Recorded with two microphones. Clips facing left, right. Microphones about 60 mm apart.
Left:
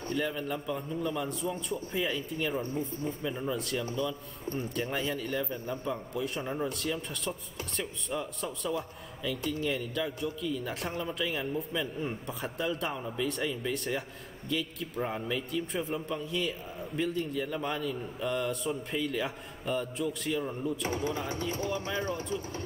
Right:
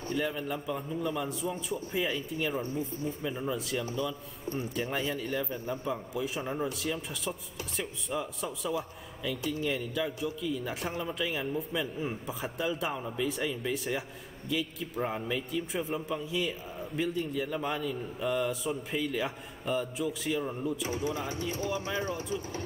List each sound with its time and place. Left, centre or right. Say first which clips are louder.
0.1 s a man's voice: even; centre
20.8 s a man's voice: even; left
21.7 s speech: even; centre